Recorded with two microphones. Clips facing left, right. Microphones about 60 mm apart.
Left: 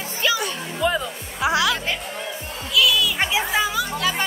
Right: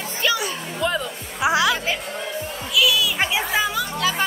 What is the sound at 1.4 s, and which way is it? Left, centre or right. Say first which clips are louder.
Music: right 1 dB; centre.